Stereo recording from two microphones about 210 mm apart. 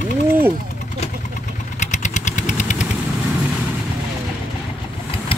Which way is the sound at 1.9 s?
35° left (ahead or behind).